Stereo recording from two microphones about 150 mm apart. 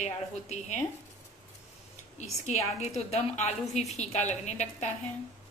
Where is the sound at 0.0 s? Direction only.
50° left (ahead or behind).